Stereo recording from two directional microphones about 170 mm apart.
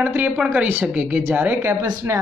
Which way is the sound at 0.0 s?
10° right (ahead or behind).